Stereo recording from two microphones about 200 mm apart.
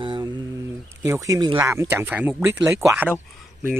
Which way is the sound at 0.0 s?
25° right (ahead or behind).